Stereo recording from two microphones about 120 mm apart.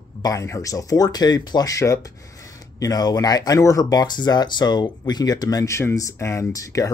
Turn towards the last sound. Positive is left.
turn(degrees=25)  # may be behind; listen again after turning